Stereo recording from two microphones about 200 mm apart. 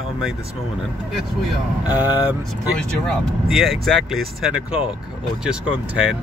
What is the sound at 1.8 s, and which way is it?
Speech, 10° right (ahead or behind).